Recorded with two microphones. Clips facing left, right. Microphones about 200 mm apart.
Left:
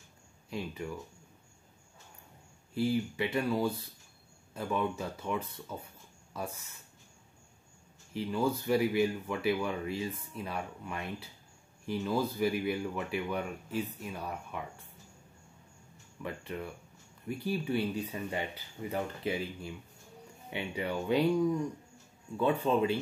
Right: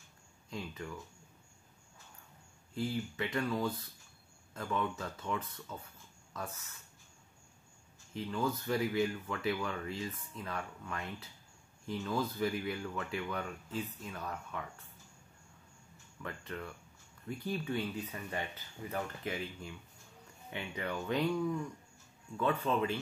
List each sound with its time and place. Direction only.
0.5 s speech: 10° left (ahead or behind)
2.8 s speech: 10° left (ahead or behind)
8.3 s speech: 10° left (ahead or behind)
16.2 s speech: 15° left (ahead or behind)